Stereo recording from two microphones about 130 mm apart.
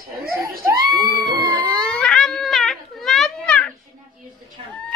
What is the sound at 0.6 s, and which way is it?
Screaming, 30° right (ahead or behind).